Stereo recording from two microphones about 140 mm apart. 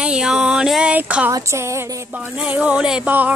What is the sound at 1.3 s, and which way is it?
Music, 20° right (ahead or behind).